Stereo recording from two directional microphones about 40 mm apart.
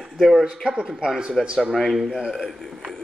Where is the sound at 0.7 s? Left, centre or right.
Centre.